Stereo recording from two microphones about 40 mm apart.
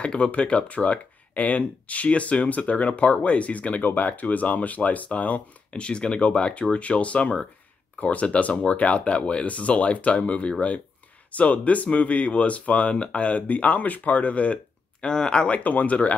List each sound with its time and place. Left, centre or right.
0.0 s speech: left
3.8 s speech: left
5.7 s speech: left
15.0 s speech: left
15.5 s speech: left